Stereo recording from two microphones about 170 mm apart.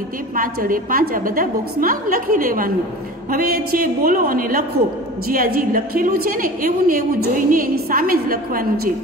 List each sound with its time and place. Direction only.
0.4 s a woman's voice: 55° right (ahead or behind)